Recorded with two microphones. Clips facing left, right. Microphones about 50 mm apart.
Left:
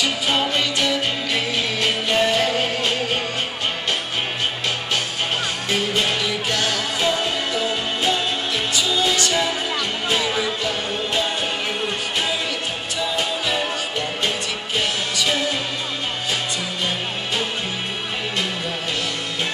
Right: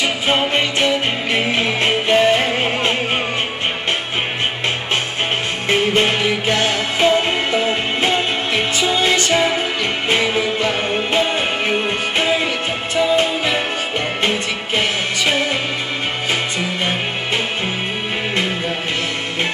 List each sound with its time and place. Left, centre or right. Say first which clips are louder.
0.0 s music: right 3 dB; right
5.7 s music: right 7 dB; right
14.8 s music: right 3 dB; right